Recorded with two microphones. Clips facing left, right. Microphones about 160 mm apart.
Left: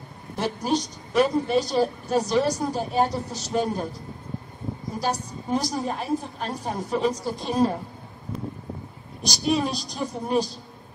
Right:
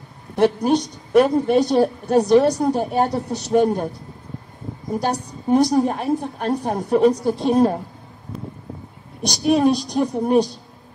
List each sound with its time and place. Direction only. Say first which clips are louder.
0.4 s a woman's voice: right 8 dB; 60° right (ahead or behind)
4.9 s a woman's voice: right 6 dB; 60° right (ahead or behind)
9.2 s a woman's voice: right 7 dB; 60° right (ahead or behind)